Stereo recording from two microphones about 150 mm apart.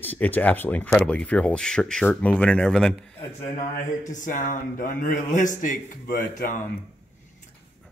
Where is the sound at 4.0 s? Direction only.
60° left (ahead or behind).